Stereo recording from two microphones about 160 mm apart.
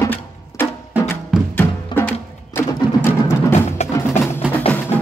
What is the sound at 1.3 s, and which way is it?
Music, 5° right (ahead or behind).